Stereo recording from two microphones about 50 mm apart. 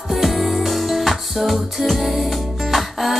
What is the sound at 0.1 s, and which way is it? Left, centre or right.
Music, centre.